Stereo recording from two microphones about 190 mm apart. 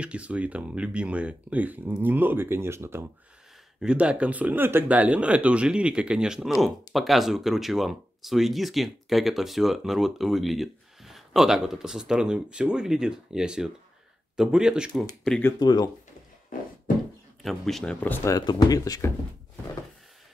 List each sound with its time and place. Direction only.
0.0 s speech: 5° right (ahead or behind)
15.6 s speech: 20° left (ahead or behind)
17.4 s speech: centre (ahead or behind); by 19.1 s 15° left (ahead or behind)